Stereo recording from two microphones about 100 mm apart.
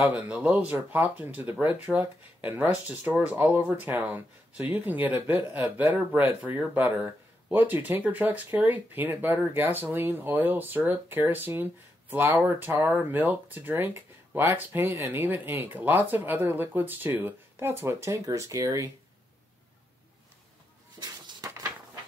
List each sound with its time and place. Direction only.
0.1 s speech: 15° right (ahead or behind); by 18.9 s 35° right (ahead or behind)